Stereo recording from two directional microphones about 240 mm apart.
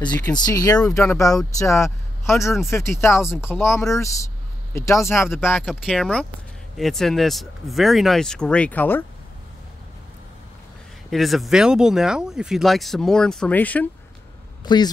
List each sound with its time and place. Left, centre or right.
0.0 s speech: centre
11.1 s speech: centre
14.6 s speech: centre